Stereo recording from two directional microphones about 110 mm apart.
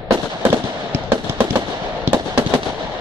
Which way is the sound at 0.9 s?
20° right (ahead or behind).